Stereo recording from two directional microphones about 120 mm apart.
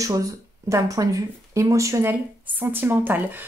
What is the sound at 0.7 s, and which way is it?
A woman's voice, 25° right (ahead or behind).